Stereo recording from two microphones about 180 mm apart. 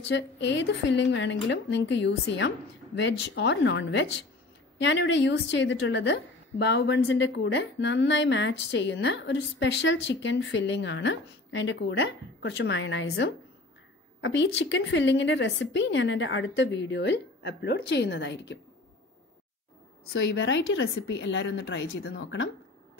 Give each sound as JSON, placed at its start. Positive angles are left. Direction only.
{"t": 0.1, "sound": "a woman's voice", "side_deg": 80}
{"t": 20.2, "sound": "a woman's voice", "side_deg": 90}